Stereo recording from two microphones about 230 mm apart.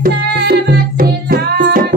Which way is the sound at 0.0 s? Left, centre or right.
Right.